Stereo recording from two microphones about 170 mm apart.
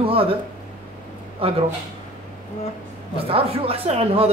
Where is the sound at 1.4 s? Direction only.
35° right (ahead or behind).